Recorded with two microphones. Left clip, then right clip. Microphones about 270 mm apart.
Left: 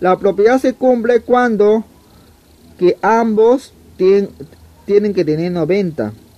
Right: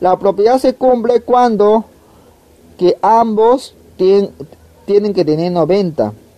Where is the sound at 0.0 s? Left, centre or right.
Centre.